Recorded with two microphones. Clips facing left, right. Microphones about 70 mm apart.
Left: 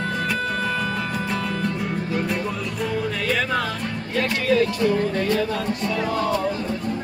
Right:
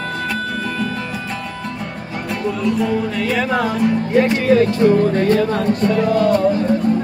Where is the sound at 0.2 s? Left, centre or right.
Centre.